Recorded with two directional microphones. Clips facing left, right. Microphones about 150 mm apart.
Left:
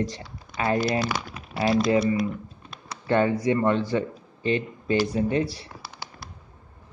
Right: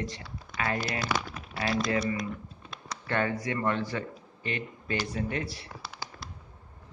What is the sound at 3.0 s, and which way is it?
Speech, 25° left (ahead or behind).